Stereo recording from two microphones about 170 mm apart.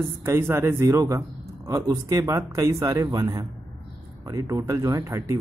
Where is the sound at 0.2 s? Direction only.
15° right (ahead or behind).